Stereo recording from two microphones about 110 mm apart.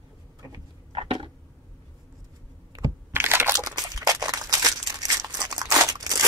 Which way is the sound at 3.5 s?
35° right (ahead or behind).